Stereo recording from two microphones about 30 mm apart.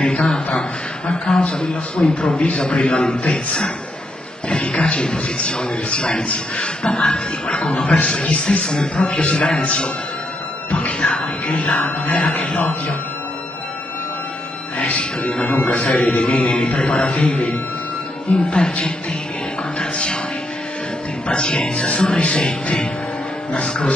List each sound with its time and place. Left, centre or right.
0.0 s a sound: left
0.5 s a man's voice: left
10.7 s music: left
11.8 s a man's voice: left
14.8 s speech: left
15.5 s a man's voice: left
15.8 s a man's voice: left
19.8 s a sound: left
21.3 s a man's voice: left